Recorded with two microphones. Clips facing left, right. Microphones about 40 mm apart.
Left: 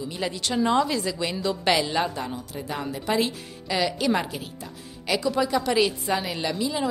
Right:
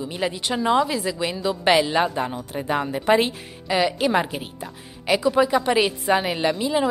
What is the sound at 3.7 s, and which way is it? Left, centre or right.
A woman's voice, centre.